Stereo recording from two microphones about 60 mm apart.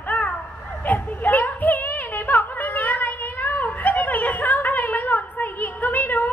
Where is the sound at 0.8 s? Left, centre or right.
Left.